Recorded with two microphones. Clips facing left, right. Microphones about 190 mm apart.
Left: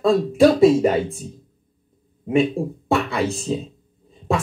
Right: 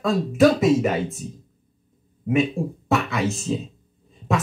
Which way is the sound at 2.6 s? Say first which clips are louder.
Left 2 dB; 35° left (ahead or behind).